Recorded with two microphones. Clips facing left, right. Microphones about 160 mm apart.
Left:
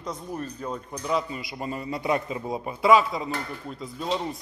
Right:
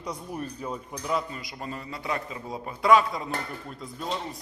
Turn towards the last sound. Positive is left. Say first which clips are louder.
# left 3 dB
turn(degrees=0)  # may be behind; listen again after turning